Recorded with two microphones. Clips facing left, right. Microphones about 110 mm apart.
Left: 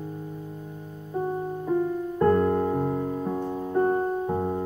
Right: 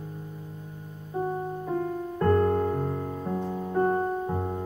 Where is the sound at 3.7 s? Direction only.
Centre (ahead or behind).